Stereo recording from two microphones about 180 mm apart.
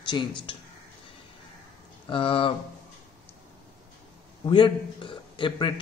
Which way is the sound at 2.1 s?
30° left (ahead or behind).